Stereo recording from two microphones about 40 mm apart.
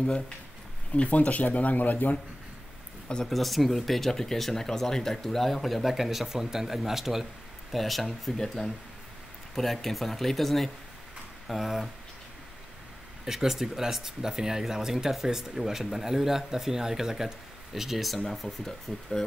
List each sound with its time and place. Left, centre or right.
0.9 s speech: left
3.3 s speech: centre
8.4 s speech: centre
9.6 s speech: centre
13.2 s speech: centre
18.7 s speech: centre